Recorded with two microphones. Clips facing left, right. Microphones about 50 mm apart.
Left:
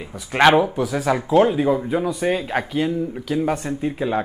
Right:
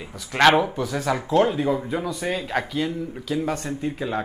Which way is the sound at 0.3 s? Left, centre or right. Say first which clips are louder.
Left 2 dB; centre.